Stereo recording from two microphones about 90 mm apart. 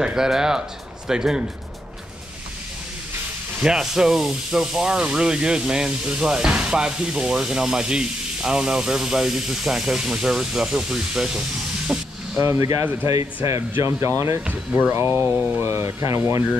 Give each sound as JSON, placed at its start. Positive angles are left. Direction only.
{"t": 0.0, "sound": "speech", "side_deg": -5}
{"t": 3.6, "sound": "speech", "side_deg": -5}
{"t": 12.4, "sound": "speech", "side_deg": -30}
{"t": 14.0, "sound": "speech", "side_deg": -35}
{"t": 14.4, "sound": "speech", "side_deg": -15}
{"t": 14.9, "sound": "speech", "side_deg": -25}